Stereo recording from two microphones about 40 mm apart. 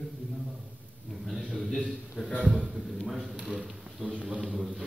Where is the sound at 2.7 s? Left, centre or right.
Centre.